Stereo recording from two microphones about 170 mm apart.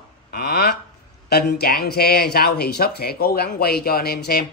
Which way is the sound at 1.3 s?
70° left (ahead or behind).